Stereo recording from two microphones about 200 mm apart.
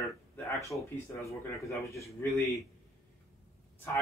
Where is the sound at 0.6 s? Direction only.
15° left (ahead or behind).